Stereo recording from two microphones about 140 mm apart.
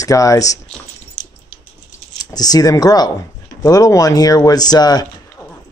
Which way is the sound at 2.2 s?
30° left (ahead or behind).